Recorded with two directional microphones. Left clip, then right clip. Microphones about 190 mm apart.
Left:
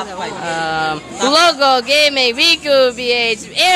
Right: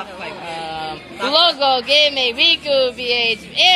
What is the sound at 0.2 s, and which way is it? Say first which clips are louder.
Speech: left 9 dB; 25° left (ahead or behind).